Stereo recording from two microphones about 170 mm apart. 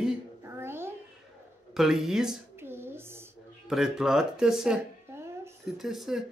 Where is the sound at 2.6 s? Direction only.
15° right (ahead or behind).